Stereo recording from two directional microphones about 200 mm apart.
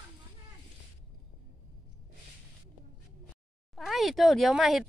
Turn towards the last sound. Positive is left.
turn(degrees=0)  # may be behind; listen again after turning